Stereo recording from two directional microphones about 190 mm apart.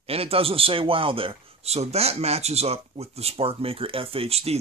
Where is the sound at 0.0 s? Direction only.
30° right (ahead or behind).